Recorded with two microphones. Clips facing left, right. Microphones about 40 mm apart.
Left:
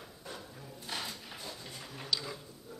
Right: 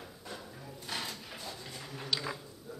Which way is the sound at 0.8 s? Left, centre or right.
Centre.